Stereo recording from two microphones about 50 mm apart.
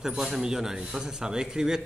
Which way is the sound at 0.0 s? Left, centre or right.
Centre.